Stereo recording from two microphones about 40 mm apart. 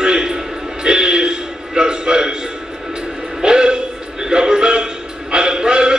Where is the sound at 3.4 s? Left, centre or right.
Centre.